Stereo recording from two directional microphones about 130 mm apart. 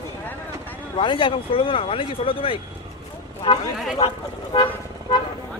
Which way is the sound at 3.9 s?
50° left (ahead or behind).